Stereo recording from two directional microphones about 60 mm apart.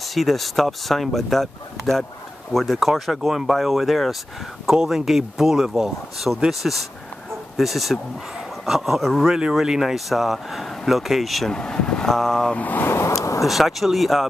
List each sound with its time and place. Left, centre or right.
0.0 s speech: centre
11.5 s speech: centre
12.5 s speech: left
12.8 s a sound: left
13.4 s speech: centre